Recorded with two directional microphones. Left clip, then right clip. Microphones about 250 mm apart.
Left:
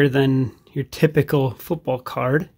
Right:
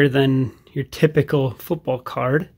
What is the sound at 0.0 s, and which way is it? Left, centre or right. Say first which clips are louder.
Speech: right 1 dB; centre.